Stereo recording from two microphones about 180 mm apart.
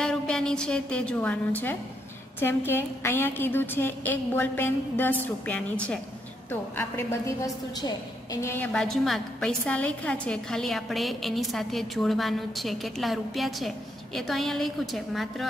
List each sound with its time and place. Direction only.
0.0 s a woman's voice: 5° left (ahead or behind)
8.7 s a woman's voice: centre (ahead or behind)